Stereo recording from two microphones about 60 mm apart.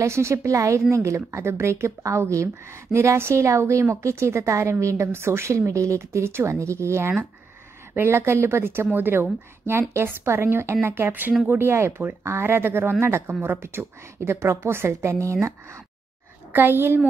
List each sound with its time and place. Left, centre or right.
0.0 s a woman's voice: right
7.9 s a woman's voice: right
16.5 s a woman's voice: right